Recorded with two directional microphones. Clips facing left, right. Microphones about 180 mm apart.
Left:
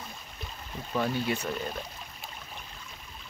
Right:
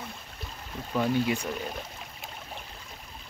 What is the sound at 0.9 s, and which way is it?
Speech, 10° right (ahead or behind).